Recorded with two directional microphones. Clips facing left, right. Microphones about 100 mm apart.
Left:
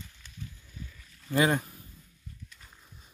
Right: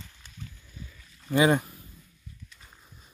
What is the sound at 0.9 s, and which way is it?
Rowboat, 5° right (ahead or behind).